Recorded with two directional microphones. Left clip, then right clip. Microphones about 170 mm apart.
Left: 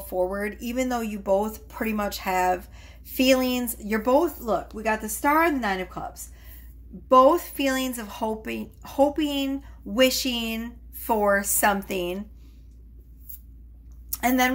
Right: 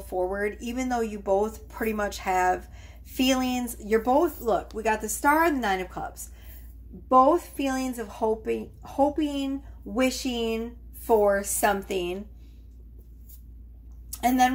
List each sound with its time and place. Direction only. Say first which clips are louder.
0.0 s speech: left 1 dB; 35° left (ahead or behind)
7.1 s speech: left 2 dB; 45° left (ahead or behind)
14.1 s a woman's voice: right 1 dB; 40° left (ahead or behind)